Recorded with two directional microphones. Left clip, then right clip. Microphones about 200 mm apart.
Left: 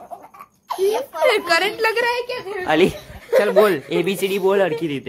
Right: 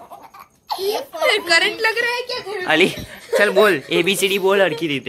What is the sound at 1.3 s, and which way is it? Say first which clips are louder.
Speech: right 2 dB; 50° left (ahead or behind).